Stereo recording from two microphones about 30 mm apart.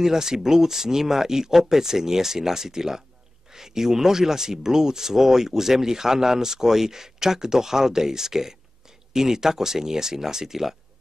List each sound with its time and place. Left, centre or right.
0.0 s speech: centre